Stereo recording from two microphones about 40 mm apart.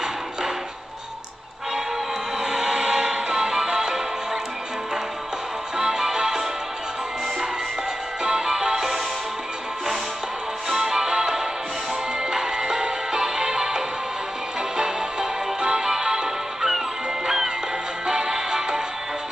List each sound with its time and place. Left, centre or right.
2.4 s music: centre
5.8 s music: centre
8.2 s music: centre
10.7 s music: centre
18.0 s music: centre